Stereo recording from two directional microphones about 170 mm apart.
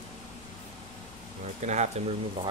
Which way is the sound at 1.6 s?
45° right (ahead or behind).